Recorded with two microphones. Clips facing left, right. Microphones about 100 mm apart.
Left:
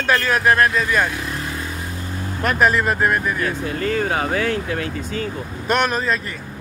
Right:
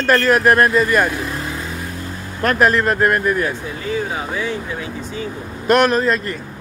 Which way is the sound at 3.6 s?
60° left (ahead or behind).